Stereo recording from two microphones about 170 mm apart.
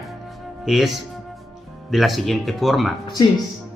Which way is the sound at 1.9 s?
Centre (ahead or behind).